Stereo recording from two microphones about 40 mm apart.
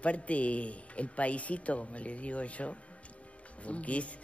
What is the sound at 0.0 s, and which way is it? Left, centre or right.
Speech, left.